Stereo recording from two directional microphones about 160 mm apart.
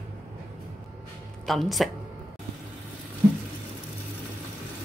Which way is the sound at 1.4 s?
Centre (ahead or behind).